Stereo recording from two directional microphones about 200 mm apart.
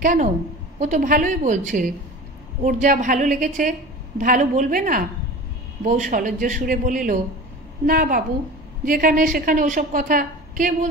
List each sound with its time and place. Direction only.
0.0 s a woman's voice: 40° right (ahead or behind)